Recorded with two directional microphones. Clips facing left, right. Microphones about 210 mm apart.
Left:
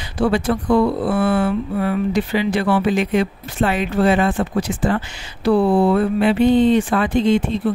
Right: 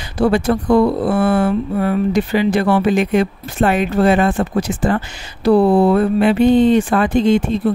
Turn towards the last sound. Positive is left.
turn(degrees=-45)  # may be behind; listen again after turning